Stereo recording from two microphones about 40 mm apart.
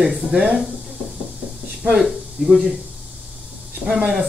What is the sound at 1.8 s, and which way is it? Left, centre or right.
Speech, centre.